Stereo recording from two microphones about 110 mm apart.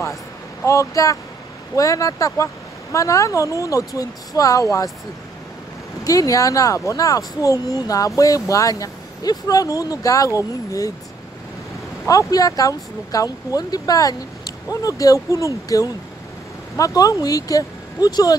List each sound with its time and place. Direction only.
0.7 s speech: 30° left (ahead or behind)
6.0 s speech: 30° left (ahead or behind)
12.1 s speech: 35° left (ahead or behind)